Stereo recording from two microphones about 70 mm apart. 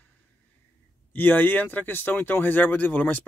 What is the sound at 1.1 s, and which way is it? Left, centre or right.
Speech, left.